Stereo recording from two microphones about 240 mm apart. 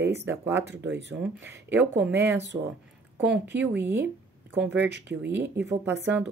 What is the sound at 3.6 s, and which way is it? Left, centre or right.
Speech, centre.